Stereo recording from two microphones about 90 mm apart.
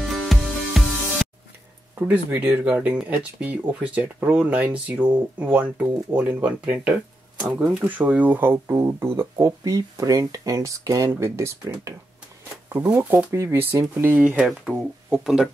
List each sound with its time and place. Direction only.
0.1 s music: centre (ahead or behind)
2.0 s speech: 20° right (ahead or behind)
12.9 s speech: 15° right (ahead or behind)
13.3 s speech: 30° right (ahead or behind); by 15.5 s 5° right (ahead or behind)